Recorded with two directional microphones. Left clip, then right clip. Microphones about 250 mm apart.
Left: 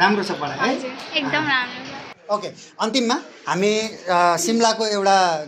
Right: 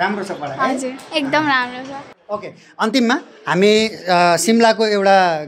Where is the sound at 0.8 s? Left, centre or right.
Right.